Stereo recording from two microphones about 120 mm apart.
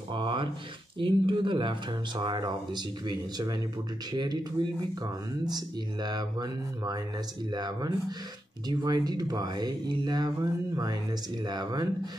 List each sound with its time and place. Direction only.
0.1 s speech: 40° right (ahead or behind)